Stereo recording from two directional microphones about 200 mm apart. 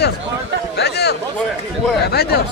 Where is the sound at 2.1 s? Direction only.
50° left (ahead or behind).